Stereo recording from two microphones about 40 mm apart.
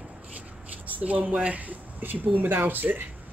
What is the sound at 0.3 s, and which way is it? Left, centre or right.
Speech, right.